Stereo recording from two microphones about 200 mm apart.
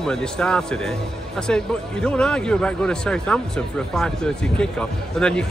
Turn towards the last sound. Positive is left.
turn(degrees=5)  # may be behind; listen again after turning